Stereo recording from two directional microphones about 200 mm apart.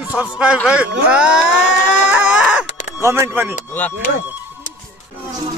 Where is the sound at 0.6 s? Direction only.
5° right (ahead or behind).